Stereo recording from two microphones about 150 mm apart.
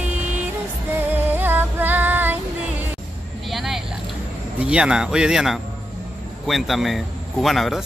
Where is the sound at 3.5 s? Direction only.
Centre (ahead or behind).